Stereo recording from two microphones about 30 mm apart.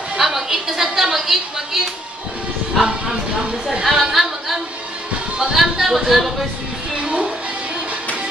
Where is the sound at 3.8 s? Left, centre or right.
Centre.